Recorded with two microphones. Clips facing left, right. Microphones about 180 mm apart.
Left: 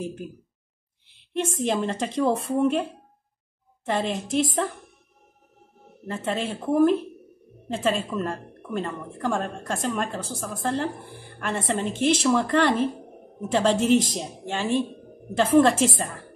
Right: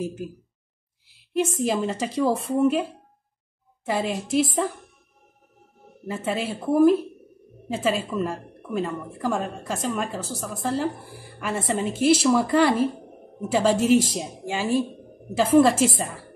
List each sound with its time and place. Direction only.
1.0 s a woman's voice: 5° right (ahead or behind)
6.0 s a woman's voice: 5° right (ahead or behind)